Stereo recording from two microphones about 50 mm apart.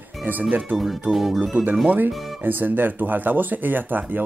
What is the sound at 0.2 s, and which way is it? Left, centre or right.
Speech, right.